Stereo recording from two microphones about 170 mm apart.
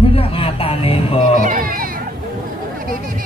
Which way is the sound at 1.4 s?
55° right (ahead or behind).